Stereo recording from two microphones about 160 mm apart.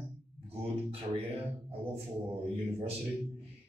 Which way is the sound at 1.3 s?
40° right (ahead or behind).